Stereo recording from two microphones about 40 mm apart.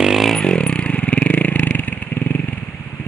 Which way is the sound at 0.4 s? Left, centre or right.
Left.